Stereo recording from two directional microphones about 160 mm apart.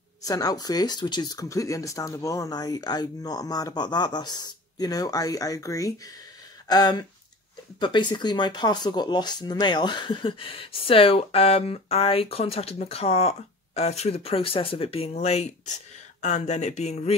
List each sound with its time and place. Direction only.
0.2 s speech: 20° left (ahead or behind); by 17.1 s 45° left (ahead or behind)